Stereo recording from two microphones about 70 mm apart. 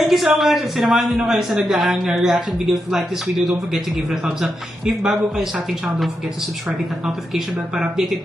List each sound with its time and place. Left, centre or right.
0.0 s a man's voice: centre
7.1 s a man's voice: centre